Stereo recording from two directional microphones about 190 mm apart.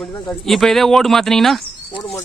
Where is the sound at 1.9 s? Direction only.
25° left (ahead or behind).